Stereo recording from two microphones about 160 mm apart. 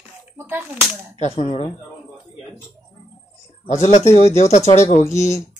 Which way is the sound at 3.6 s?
45° left (ahead or behind).